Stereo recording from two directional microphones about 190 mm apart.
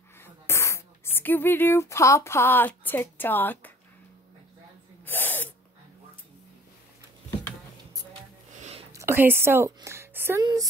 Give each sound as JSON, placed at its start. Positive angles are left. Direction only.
{"t": 0.2, "sound": "speech", "side_deg": 15}
{"t": 5.0, "sound": "sneeze", "side_deg": 10}
{"t": 8.9, "sound": "a sound", "side_deg": -10}
{"t": 10.4, "sound": "a woman's voice", "side_deg": -20}